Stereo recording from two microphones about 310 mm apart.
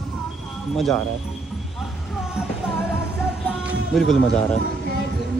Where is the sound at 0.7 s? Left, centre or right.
Centre.